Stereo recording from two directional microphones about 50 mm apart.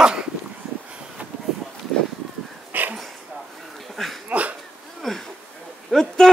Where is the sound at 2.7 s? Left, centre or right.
Right.